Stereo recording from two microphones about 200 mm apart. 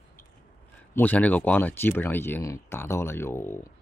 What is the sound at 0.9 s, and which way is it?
Speech, 10° left (ahead or behind).